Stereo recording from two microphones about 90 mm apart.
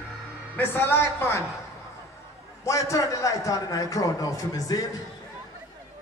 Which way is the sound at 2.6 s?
35° left (ahead or behind).